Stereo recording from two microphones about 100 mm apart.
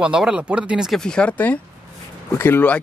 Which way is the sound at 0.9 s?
5° left (ahead or behind).